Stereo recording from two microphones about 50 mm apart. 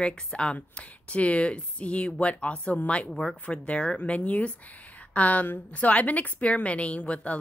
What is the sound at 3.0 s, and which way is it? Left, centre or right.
Speech, centre.